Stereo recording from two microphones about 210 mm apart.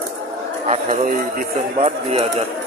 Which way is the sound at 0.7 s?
35° right (ahead or behind).